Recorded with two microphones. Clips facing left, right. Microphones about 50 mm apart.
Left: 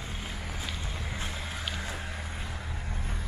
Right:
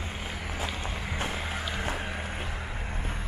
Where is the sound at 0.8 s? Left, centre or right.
Right.